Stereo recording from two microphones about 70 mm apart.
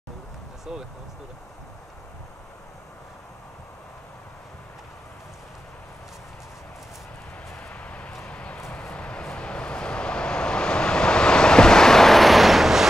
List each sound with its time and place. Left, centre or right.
0.7 s speech: centre
7.5 s vehicle: centre
8.3 s a sound: centre
8.7 s vehicle: centre